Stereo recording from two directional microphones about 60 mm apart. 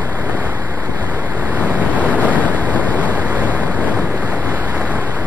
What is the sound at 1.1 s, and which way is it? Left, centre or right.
Waves, right.